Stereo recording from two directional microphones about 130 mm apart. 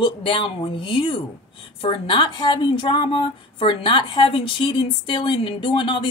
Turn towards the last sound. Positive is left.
turn(degrees=40)  # may be behind; listen again after turning